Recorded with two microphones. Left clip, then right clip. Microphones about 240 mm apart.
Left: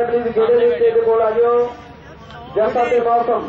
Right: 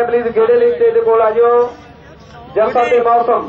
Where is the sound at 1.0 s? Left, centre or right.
Centre.